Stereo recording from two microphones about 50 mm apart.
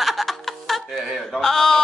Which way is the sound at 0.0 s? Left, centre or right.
Centre.